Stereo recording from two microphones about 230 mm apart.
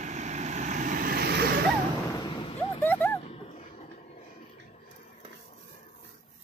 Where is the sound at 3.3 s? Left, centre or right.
Left.